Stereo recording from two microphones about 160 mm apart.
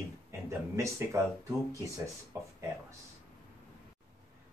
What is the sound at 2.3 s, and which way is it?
Speech, 15° right (ahead or behind).